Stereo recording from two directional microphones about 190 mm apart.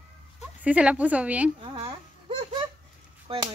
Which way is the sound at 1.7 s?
25° right (ahead or behind).